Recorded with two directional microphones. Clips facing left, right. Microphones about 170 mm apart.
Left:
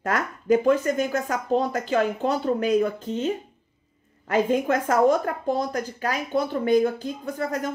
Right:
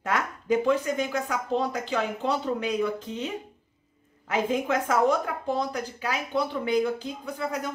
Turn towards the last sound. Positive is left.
turn(degrees=50)  # may be behind; listen again after turning